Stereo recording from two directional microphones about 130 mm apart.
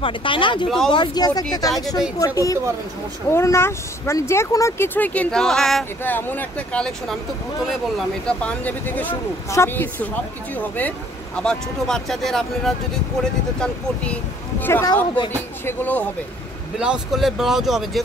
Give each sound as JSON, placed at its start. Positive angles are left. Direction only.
{"t": 0.0, "sound": "speech", "side_deg": 40}
{"t": 0.7, "sound": "speech", "side_deg": 5}
{"t": 0.9, "sound": "speech", "side_deg": 35}
{"t": 6.0, "sound": "speech", "side_deg": 15}
{"t": 8.3, "sound": "speech", "side_deg": 10}
{"t": 14.6, "sound": "speech", "side_deg": 20}
{"t": 16.8, "sound": "speech", "side_deg": -5}